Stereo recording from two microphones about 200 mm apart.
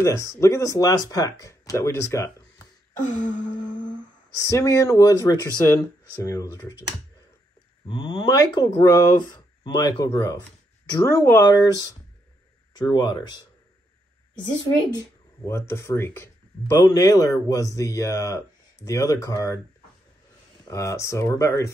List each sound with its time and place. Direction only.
0.0 s speech: 15° left (ahead or behind)
4.4 s speech: 15° left (ahead or behind)
7.9 s speech: 20° left (ahead or behind)
14.4 s speech: 20° left (ahead or behind)
20.6 s speech: 15° left (ahead or behind)